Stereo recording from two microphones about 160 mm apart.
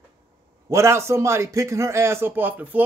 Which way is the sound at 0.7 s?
15° right (ahead or behind).